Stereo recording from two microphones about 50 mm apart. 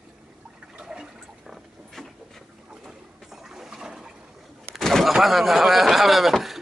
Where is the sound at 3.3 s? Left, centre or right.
Centre.